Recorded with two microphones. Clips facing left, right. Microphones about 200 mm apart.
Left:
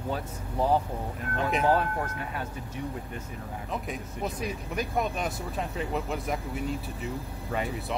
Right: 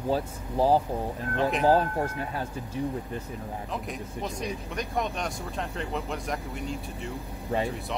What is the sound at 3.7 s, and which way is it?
Speech, centre (ahead or behind).